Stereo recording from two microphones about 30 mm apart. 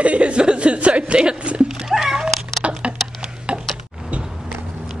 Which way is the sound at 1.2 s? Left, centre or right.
Right.